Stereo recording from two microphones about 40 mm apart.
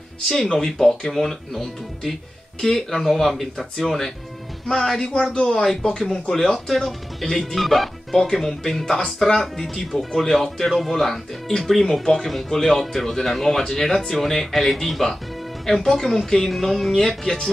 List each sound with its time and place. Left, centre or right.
0.6 s speech: centre
5.3 s speech: left